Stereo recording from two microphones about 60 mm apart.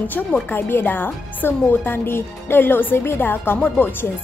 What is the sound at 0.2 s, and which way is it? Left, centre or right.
Speech, centre.